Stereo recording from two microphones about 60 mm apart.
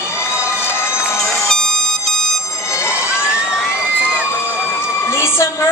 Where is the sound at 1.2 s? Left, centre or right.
Centre.